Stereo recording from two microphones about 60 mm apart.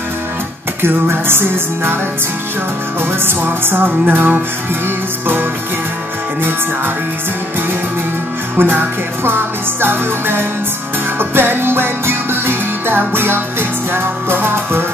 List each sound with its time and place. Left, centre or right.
0.8 s music: right
3.3 s music: right
8.5 s music: right